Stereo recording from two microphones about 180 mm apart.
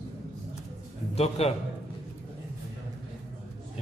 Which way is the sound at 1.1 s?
35° left (ahead or behind).